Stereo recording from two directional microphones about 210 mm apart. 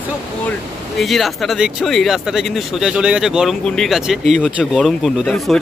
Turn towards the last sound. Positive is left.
turn(degrees=0)  # may be behind; listen again after turning